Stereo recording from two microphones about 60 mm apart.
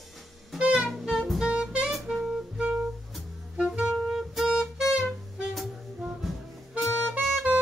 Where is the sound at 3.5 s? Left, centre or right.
Centre.